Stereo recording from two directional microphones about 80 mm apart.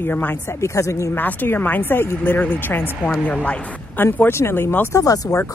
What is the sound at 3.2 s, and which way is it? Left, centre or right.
Speech, centre.